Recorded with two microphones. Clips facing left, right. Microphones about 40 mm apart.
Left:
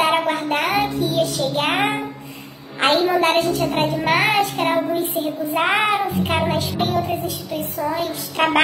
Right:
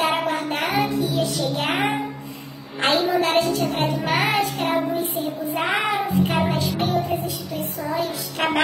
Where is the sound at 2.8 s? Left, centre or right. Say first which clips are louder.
Left 3 dB; left.